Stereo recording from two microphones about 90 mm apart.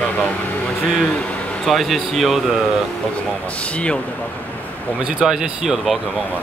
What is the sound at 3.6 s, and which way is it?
Speech, 15° left (ahead or behind).